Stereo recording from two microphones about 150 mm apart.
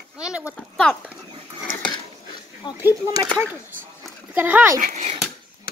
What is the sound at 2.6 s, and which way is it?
Speech, 30° left (ahead or behind).